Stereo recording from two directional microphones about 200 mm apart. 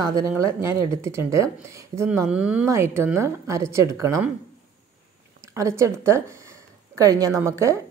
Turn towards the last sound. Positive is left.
turn(degrees=-15)  # may be behind; listen again after turning